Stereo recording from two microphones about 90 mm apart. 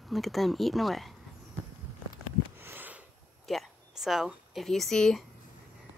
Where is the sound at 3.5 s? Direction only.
Centre (ahead or behind).